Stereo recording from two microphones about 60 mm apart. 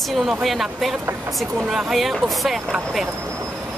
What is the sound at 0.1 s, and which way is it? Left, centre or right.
Speech, centre.